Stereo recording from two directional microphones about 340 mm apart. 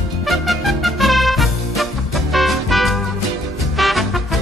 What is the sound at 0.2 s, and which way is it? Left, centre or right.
Music, centre.